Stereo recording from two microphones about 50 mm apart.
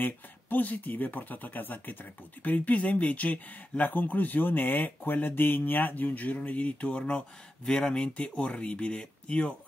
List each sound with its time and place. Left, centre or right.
0.0 s speech: left; by 8.1 s centre
8.2 s speech: left